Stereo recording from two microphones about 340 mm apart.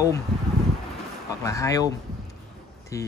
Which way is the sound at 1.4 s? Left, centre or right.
Centre.